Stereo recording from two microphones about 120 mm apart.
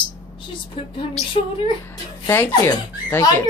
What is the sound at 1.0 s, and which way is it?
Speech, 45° left (ahead or behind).